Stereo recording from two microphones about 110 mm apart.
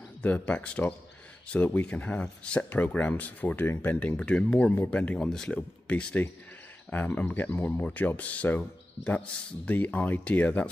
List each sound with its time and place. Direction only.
0.2 s speech: 15° left (ahead or behind)